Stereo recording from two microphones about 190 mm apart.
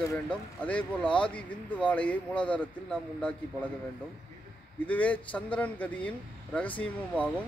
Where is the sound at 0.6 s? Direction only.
5° left (ahead or behind).